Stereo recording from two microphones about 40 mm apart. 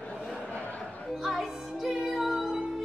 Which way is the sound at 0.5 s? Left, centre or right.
Left.